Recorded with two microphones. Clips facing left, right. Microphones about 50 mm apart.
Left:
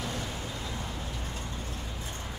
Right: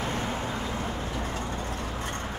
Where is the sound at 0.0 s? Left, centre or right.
Right.